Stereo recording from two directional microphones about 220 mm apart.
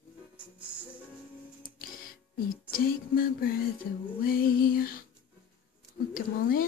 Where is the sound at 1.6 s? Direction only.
40° left (ahead or behind).